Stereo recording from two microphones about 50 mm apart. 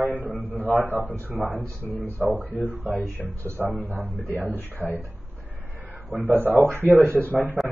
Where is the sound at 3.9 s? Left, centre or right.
Right.